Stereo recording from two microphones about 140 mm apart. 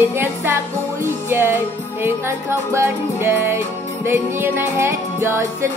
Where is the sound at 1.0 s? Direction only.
15° right (ahead or behind).